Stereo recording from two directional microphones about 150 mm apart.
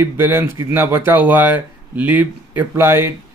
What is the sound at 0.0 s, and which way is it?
Speech, 15° right (ahead or behind).